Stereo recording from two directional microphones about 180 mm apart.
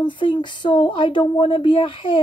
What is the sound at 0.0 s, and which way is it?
Speech, 25° left (ahead or behind).